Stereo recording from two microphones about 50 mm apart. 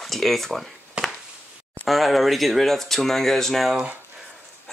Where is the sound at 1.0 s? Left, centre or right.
Right.